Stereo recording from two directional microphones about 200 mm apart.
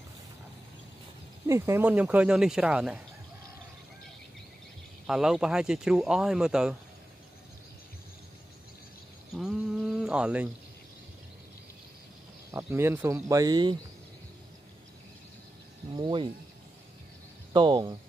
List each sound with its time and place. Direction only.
1.5 s speech: 10° right (ahead or behind)
5.0 s speech: centre (ahead or behind)
9.3 s a sound: centre (ahead or behind)
12.4 s speech: 10° right (ahead or behind)
15.9 s speech: 25° right (ahead or behind)
17.5 s speech: 25° right (ahead or behind)